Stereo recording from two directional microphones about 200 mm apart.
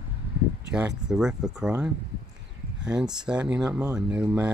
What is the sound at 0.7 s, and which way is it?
Speech, 5° right (ahead or behind).